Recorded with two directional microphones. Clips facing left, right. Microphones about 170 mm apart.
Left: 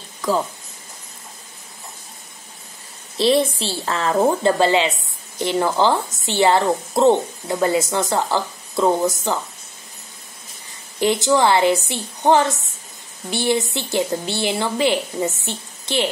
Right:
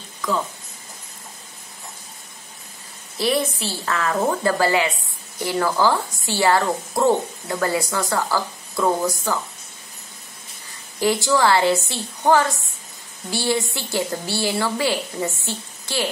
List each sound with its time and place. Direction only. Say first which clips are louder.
3.2 s a woman's voice: left 5 dB; 25° left (ahead or behind)
11.0 s a woman's voice: left 2 dB; 20° left (ahead or behind)